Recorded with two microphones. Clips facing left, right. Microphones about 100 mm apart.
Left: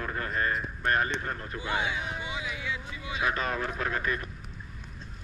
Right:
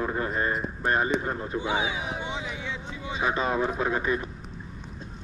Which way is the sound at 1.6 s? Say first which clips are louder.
Right 1 dB; 5° right (ahead or behind).